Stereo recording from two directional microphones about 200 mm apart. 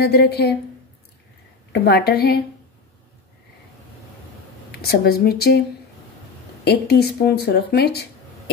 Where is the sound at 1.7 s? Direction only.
55° left (ahead or behind).